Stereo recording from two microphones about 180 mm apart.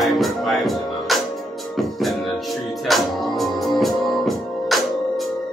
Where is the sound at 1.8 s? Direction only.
Centre (ahead or behind).